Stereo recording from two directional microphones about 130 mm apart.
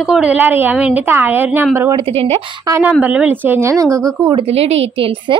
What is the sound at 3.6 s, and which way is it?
Speech, 20° right (ahead or behind).